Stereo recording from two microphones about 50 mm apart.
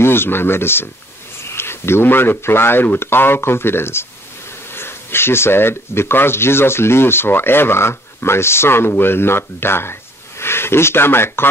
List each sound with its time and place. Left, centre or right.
0.0 s speech: left